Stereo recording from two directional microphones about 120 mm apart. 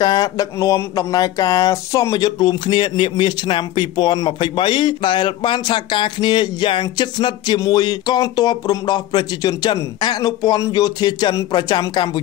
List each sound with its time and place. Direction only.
0.0 s speech: 35° left (ahead or behind)